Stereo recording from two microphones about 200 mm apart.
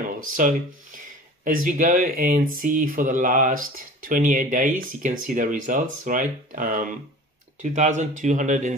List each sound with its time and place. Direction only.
0.4 s speech: 40° right (ahead or behind)